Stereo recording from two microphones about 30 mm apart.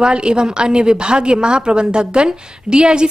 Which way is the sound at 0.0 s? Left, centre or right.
Right.